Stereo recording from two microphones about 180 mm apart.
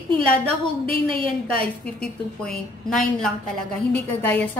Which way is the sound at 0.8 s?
30° right (ahead or behind).